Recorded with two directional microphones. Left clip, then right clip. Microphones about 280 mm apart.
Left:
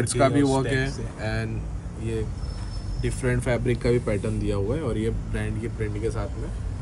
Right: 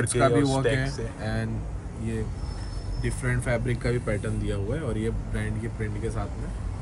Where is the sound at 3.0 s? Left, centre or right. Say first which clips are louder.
Left 4 dB; centre.